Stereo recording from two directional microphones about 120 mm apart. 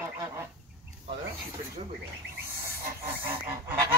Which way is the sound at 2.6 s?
20° right (ahead or behind).